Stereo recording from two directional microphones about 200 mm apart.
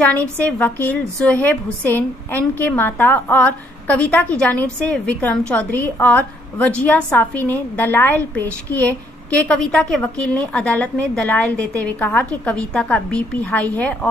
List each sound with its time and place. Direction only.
0.0 s a woman's voice: 5° left (ahead or behind)